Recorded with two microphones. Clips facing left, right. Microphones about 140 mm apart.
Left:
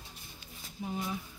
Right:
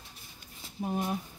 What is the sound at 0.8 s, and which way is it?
Speech, 50° right (ahead or behind).